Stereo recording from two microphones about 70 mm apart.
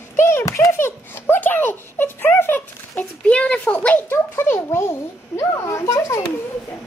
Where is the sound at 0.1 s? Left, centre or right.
Left.